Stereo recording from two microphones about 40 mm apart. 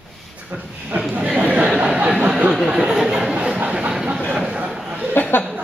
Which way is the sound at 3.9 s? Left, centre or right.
Centre.